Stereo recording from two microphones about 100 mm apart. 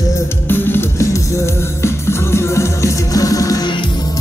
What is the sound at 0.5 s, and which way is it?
Music, 20° left (ahead or behind).